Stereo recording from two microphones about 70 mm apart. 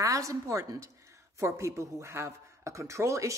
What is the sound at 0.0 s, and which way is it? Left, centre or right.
A man's voice, right.